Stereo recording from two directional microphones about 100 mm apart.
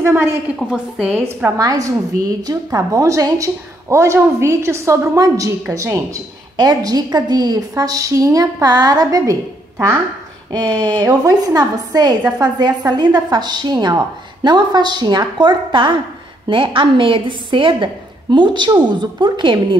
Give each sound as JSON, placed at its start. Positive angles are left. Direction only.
{"t": 0.0, "sound": "a woman's voice", "side_deg": -25}
{"t": 0.7, "sound": "a woman's voice", "side_deg": -10}
{"t": 1.6, "sound": "a woman's voice", "side_deg": -35}
{"t": 6.5, "sound": "a woman's voice", "side_deg": -45}
{"t": 10.5, "sound": "a woman's voice", "side_deg": -45}